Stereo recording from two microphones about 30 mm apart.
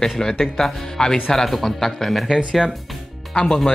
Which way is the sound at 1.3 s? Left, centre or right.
Centre.